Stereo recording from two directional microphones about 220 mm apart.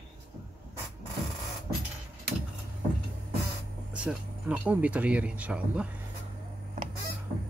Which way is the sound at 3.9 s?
5° right (ahead or behind).